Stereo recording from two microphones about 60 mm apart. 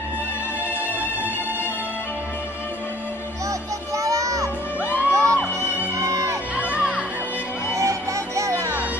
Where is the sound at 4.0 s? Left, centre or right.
Right.